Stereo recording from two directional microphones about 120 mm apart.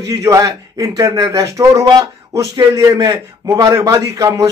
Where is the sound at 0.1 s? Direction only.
25° right (ahead or behind).